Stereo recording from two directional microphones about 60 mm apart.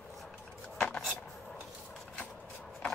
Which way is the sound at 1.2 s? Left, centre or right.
Centre.